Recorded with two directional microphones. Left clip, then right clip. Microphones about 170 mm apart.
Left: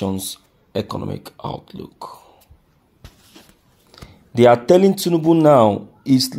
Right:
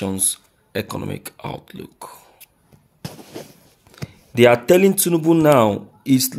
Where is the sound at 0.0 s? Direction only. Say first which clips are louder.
Left 1 dB; 5° left (ahead or behind).